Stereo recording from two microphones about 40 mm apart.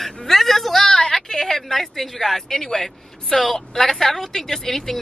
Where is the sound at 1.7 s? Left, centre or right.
Centre.